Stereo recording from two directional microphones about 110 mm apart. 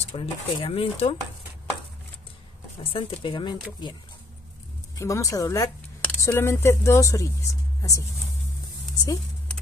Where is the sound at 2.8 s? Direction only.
60° left (ahead or behind).